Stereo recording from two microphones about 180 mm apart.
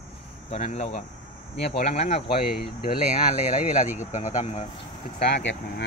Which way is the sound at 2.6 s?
55° left (ahead or behind).